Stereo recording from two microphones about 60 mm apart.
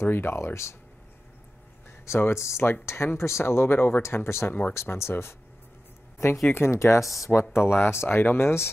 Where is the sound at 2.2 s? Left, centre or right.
Left.